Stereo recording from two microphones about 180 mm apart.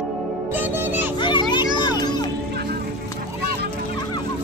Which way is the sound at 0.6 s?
10° right (ahead or behind).